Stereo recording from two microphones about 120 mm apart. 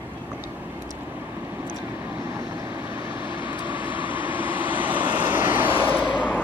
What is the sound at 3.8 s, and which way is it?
Vehicle, 15° right (ahead or behind).